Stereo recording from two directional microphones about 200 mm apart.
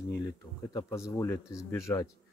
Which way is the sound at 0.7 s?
15° left (ahead or behind).